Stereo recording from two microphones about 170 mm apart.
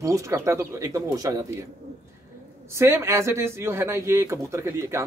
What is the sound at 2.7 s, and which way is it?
Speech, 15° right (ahead or behind).